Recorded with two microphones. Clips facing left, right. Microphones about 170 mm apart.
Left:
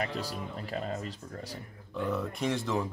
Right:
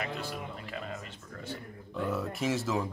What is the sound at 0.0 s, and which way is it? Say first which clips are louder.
Speech: left 2 dB; 40° left (ahead or behind).